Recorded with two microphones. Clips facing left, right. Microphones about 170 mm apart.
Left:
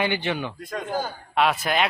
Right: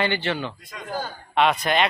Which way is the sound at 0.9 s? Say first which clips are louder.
Right 1 dB; 5° left (ahead or behind).